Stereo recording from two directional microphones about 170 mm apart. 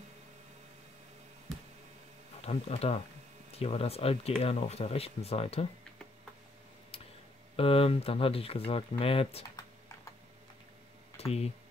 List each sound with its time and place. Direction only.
2.4 s speech: 35° left (ahead or behind)
6.9 s tick-tock: 35° left (ahead or behind)
7.5 s speech: 35° left (ahead or behind)
11.1 s speech: 35° left (ahead or behind)